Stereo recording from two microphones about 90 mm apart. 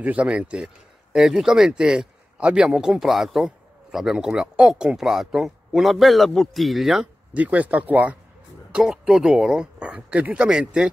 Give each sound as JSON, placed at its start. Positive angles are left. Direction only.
{"t": 0.0, "sound": "speech", "side_deg": -15}
{"t": 7.3, "sound": "speech", "side_deg": -15}